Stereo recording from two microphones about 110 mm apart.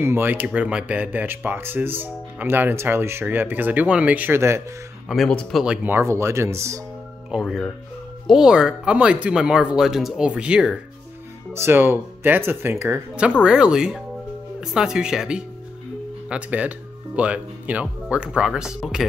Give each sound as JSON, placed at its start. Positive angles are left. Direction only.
{"t": 0.0, "sound": "speech", "side_deg": -20}
{"t": 5.0, "sound": "speech", "side_deg": 0}
{"t": 5.3, "sound": "speech", "side_deg": 10}
{"t": 5.9, "sound": "speech", "side_deg": -25}
{"t": 7.2, "sound": "speech", "side_deg": -5}
{"t": 11.5, "sound": "speech", "side_deg": -20}
{"t": 13.4, "sound": "speech", "side_deg": -10}